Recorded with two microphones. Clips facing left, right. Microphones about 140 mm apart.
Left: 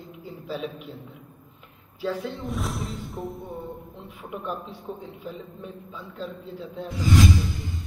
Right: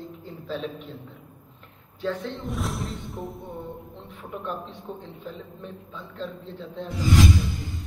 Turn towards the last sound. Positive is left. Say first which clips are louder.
# even
turn(degrees=0)  # may be behind; listen again after turning